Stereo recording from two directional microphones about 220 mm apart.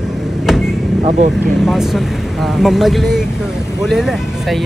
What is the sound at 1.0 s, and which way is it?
Speech, 35° right (ahead or behind).